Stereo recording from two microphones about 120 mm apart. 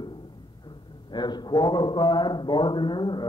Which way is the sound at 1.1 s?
35° left (ahead or behind).